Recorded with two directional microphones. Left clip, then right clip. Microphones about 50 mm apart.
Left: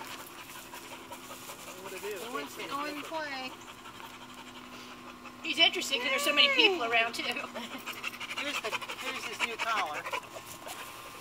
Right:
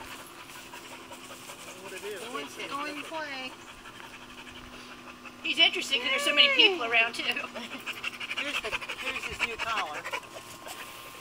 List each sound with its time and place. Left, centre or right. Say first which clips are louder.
2.3 s a sound: right 2 dB; centre
5.4 s speech: right 2 dB; left
7.5 s speech: right 2 dB; centre